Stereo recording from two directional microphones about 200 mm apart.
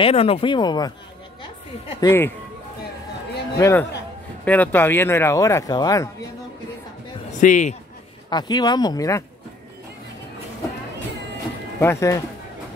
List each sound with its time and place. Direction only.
0.0 s a woman's voice: 30° left (ahead or behind); by 2.3 s 15° left (ahead or behind)
3.5 s speech: 15° left (ahead or behind)
7.3 s a man's voice: 40° left (ahead or behind)
8.3 s speech: 20° left (ahead or behind)
11.8 s speech: 15° left (ahead or behind)